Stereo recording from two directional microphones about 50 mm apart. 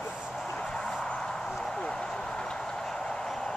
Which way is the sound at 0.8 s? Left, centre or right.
Centre.